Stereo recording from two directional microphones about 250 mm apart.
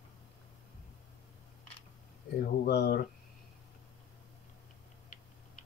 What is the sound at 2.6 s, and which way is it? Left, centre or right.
Speech, left.